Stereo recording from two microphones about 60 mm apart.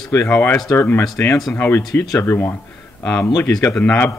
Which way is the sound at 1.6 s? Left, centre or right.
Left.